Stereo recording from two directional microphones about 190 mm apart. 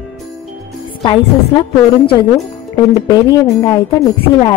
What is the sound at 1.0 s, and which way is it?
A woman's voice, 25° left (ahead or behind).